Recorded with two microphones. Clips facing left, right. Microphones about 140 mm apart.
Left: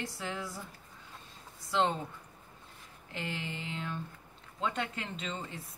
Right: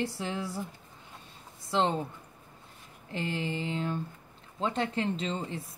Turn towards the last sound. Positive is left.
turn(degrees=-30)  # may be behind; listen again after turning